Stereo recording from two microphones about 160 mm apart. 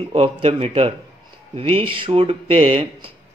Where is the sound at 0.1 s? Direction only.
40° right (ahead or behind).